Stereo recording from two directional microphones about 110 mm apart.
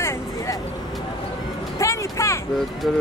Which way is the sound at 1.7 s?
25° left (ahead or behind).